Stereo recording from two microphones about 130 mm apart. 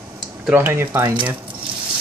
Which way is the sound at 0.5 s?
15° right (ahead or behind).